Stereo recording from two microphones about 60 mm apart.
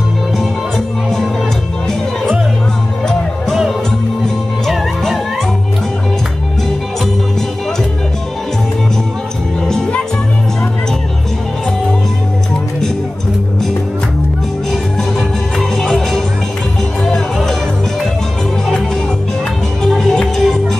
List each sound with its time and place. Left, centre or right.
4.6 s music: centre
9.7 s music: centre
14.7 s music: centre
19.8 s music: centre